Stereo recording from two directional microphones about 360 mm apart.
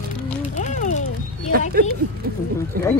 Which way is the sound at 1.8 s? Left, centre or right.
Right.